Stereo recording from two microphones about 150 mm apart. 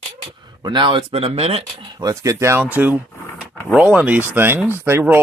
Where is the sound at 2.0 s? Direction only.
20° right (ahead or behind).